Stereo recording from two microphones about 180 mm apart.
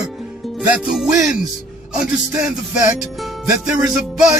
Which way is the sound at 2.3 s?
5° right (ahead or behind).